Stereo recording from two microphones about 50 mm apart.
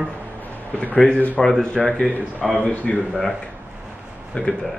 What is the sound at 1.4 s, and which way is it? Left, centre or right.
Speech, centre.